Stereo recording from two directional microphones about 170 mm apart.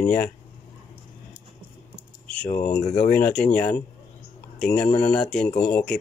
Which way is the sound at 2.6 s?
10° left (ahead or behind).